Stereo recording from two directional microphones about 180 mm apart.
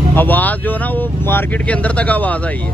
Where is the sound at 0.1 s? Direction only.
10° left (ahead or behind).